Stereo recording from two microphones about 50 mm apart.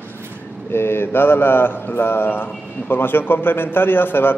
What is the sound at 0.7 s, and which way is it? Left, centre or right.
Mantra, left.